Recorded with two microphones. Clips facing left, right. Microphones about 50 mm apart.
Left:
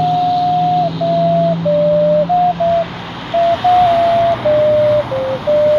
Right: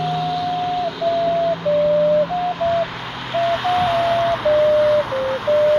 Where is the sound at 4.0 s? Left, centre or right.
Centre.